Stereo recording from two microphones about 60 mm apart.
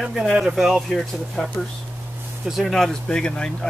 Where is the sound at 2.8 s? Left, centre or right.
Centre.